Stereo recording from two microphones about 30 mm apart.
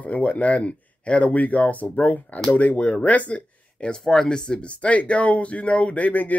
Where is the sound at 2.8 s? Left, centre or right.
Left.